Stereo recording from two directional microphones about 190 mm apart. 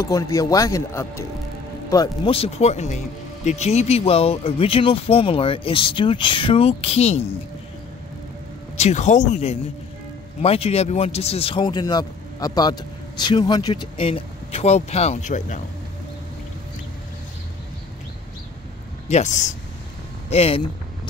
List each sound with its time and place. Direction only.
0.0 s a man's voice: 15° left (ahead or behind)
2.3 s speech: 35° left (ahead or behind)
8.7 s a man's voice: 35° left (ahead or behind)
19.0 s speech: 40° left (ahead or behind)
20.2 s a sound: 30° left (ahead or behind)